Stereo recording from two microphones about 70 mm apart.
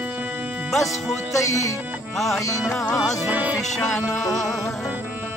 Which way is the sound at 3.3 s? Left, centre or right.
Right.